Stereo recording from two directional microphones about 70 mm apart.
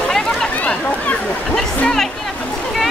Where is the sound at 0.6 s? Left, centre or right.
Left.